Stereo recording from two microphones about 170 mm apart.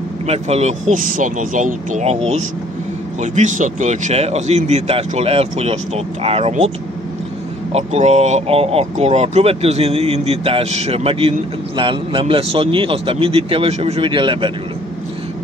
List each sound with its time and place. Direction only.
0.3 s speech: 40° right (ahead or behind)
7.7 s speech: 40° right (ahead or behind)